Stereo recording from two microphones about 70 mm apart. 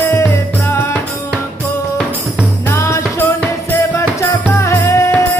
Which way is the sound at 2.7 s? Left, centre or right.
Left.